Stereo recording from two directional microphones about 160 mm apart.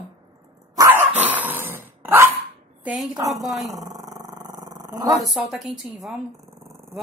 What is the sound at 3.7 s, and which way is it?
Roar, 20° right (ahead or behind).